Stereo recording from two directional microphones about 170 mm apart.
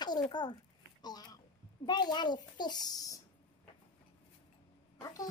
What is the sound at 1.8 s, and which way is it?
A child's voice, 25° left (ahead or behind).